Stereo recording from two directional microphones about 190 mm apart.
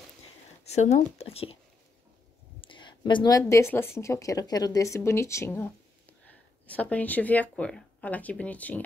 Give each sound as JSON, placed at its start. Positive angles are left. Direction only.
{"t": 0.7, "sound": "speech", "side_deg": 35}
{"t": 2.6, "sound": "speech", "side_deg": 25}
{"t": 6.7, "sound": "speech", "side_deg": 10}